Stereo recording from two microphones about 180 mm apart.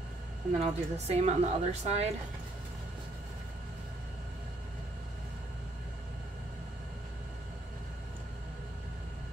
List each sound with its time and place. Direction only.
0.6 s a woman's voice: 35° right (ahead or behind)